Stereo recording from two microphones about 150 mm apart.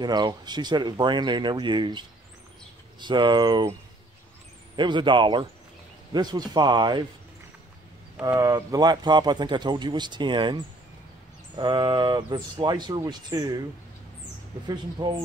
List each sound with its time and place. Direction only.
0.0 s speech: 30° right (ahead or behind)
4.7 s speech: 30° right (ahead or behind)
8.2 s speech: 20° right (ahead or behind)
14.7 s speech: 30° right (ahead or behind)